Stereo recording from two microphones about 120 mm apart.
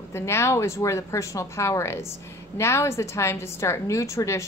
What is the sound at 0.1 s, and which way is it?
Speech, 20° left (ahead or behind).